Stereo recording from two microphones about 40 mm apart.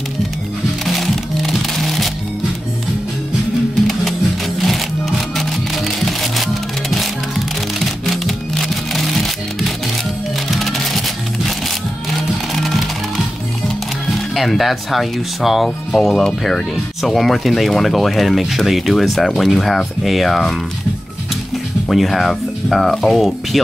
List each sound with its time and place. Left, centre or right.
0.8 s music: centre
4.6 s music: centre
10.5 s music: centre
12.5 s music: centre
14.3 s speech: centre
21.9 s speech: centre
23.1 s speech: centre